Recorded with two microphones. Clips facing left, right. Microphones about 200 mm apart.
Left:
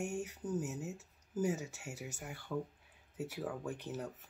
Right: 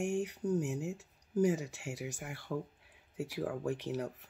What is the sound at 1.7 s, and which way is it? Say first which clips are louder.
Speech: right 5 dB; 65° right (ahead or behind).